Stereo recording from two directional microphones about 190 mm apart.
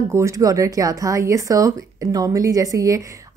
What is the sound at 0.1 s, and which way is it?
A woman's voice, 15° right (ahead or behind).